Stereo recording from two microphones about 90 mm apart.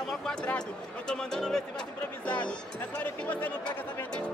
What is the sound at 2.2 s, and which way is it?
Speech, 15° left (ahead or behind).